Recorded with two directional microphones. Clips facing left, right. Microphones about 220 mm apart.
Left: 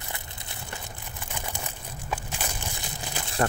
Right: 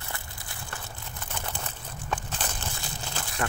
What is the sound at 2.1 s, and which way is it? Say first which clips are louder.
Crushing: even; 10° left (ahead or behind).